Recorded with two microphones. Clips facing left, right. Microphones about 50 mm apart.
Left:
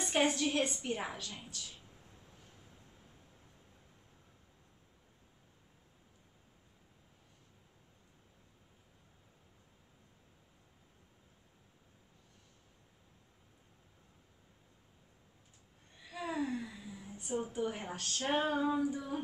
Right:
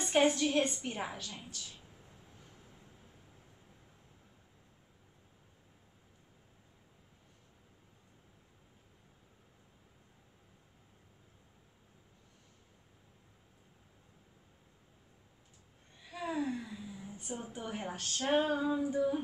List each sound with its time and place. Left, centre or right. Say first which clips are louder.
0.0 s a woman's voice: right 3 dB; centre
16.1 s a sound: right 1 dB; centre
17.3 s a woman's voice: left 6 dB; centre
18.1 s female singing: right 2 dB; centre
18.8 s singing: right 4 dB; centre